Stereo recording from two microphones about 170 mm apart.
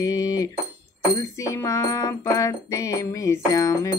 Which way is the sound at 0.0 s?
20° left (ahead or behind).